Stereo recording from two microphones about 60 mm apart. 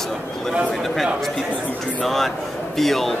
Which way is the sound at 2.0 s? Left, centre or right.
Centre.